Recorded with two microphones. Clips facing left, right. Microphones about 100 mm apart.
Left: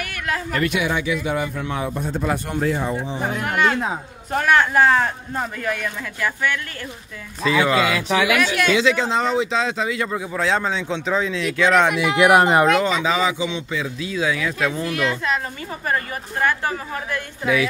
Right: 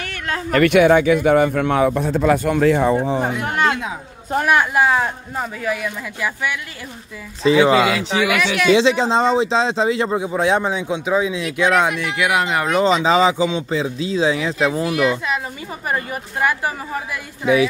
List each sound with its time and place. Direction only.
0.0 s a sound: 30° right (ahead or behind)
0.5 s a man's voice: 65° right (ahead or behind); by 3.0 s 80° right
3.4 s speech: 30° right (ahead or behind)
3.7 s speech: 35° left (ahead or behind)
4.3 s speech: 15° right (ahead or behind)
7.4 s speech: 25° right (ahead or behind)
8.4 s speech: centre (ahead or behind)
8.7 s speech: 30° right (ahead or behind); by 11.9 s 15° right (ahead or behind)
12.2 s speech: 40° left (ahead or behind)
12.7 s speech: 25° right (ahead or behind)
14.7 s speech: 15° right (ahead or behind)